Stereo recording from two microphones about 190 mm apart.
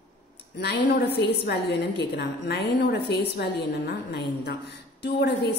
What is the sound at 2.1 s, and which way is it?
A woman's voice, 60° left (ahead or behind).